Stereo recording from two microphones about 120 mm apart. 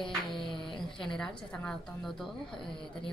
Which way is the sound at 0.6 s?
45° left (ahead or behind).